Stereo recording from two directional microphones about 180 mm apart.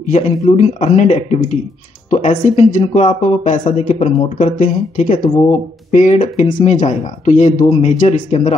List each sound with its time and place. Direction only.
0.0 s speech: 45° left (ahead or behind)